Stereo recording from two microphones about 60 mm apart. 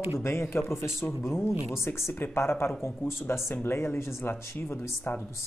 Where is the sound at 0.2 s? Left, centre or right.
Left.